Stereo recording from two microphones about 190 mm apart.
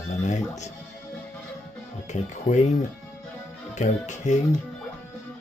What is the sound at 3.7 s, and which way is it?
Speech, 40° left (ahead or behind).